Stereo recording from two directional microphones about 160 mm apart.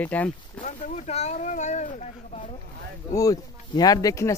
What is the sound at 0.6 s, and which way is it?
Speech, 50° left (ahead or behind).